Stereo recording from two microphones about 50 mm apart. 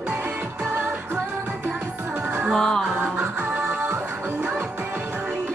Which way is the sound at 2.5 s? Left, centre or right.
Centre.